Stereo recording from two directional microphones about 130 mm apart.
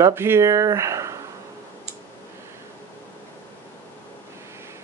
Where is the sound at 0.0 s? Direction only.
20° right (ahead or behind).